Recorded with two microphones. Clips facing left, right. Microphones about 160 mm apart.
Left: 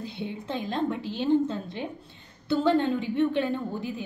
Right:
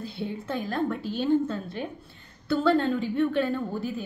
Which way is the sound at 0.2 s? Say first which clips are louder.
Right 2 dB; 20° left (ahead or behind).